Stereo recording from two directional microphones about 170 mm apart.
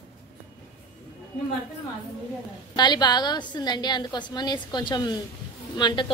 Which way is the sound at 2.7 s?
25° left (ahead or behind).